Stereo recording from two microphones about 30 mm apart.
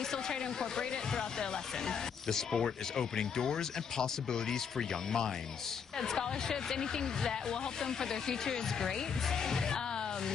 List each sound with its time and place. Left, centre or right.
0.1 s speech: centre